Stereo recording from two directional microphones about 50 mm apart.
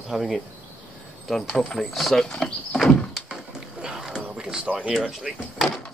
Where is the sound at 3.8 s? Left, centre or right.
Centre.